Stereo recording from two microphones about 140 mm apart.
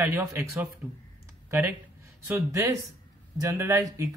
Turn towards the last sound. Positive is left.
turn(degrees=-25)  # may be behind; listen again after turning